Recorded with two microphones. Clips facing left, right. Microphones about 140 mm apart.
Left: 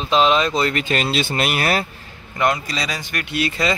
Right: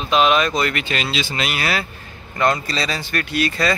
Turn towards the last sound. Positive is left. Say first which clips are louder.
# right 1 dB
turn(degrees=20)  # may be behind; listen again after turning